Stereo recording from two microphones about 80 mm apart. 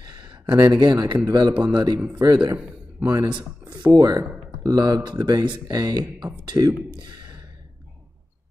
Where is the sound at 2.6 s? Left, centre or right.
Centre.